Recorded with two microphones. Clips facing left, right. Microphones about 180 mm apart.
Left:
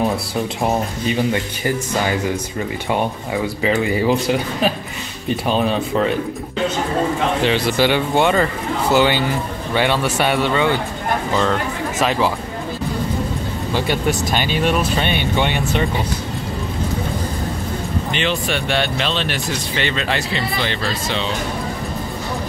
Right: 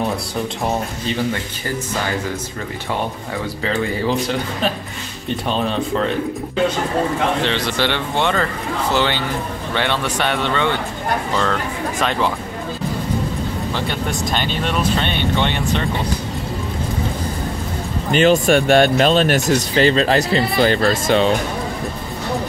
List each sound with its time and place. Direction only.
3.6 s speech: 10° left (ahead or behind)
5.3 s speech: 5° left (ahead or behind)
7.4 s speech: 10° left (ahead or behind)
12.0 s speech: 5° left (ahead or behind)
13.8 s speech: 10° left (ahead or behind)
18.1 s speech: 45° right (ahead or behind)